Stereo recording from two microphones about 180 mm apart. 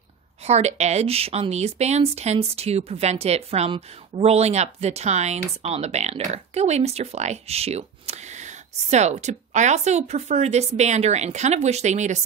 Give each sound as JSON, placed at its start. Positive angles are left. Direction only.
{"t": 0.5, "sound": "speech", "side_deg": -40}